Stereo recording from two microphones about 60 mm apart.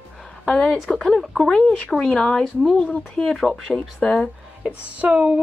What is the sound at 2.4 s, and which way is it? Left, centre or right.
Speech, centre.